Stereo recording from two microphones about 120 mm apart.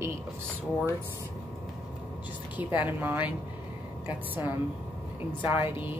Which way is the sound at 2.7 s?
15° right (ahead or behind).